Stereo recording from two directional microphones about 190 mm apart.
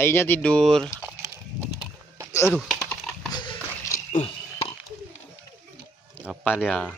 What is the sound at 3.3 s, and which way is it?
Dog, 20° left (ahead or behind).